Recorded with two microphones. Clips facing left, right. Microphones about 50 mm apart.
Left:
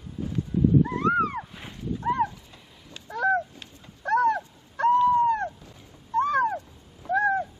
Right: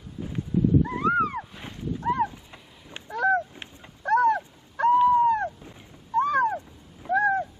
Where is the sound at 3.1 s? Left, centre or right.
Centre.